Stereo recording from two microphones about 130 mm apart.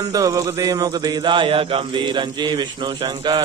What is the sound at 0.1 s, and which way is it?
Speech, 25° right (ahead or behind).